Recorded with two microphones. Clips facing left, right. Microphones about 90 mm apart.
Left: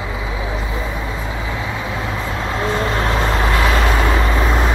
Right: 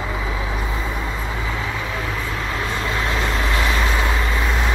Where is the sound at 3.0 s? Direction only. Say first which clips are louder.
Left 4 dB; 45° left (ahead or behind).